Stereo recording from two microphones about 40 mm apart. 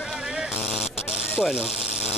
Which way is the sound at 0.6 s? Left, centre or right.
Centre.